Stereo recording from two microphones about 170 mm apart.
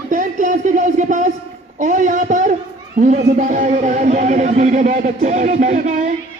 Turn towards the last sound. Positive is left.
turn(degrees=-45)  # may be behind; listen again after turning